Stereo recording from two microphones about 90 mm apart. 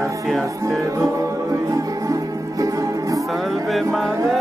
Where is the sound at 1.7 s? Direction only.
40° right (ahead or behind).